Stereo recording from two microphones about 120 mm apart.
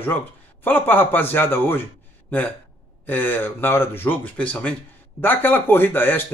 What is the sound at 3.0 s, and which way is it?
Speech, 15° left (ahead or behind).